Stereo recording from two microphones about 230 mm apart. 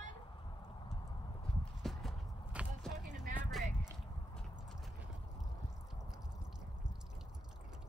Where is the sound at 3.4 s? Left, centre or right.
Centre.